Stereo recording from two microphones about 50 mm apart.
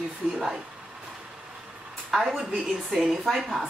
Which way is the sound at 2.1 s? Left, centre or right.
Centre.